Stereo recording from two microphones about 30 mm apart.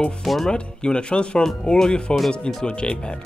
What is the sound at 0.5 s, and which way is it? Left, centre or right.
Speech, left.